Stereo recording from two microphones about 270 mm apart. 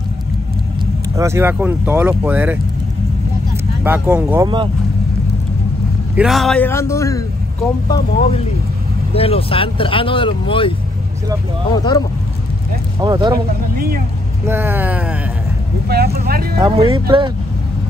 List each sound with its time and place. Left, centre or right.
1.1 s speech: centre
3.8 s speech: centre
6.1 s a man's voice: centre
7.9 s speech: left
11.7 s a man's voice: centre
13.0 s speech: centre
13.7 s speech: right
14.4 s speech: centre
15.9 s speech: right
16.5 s speech: centre